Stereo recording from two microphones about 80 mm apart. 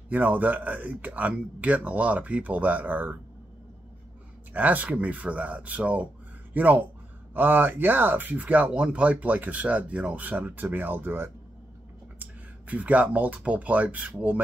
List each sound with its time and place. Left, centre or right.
0.1 s speech: right
4.6 s speech: centre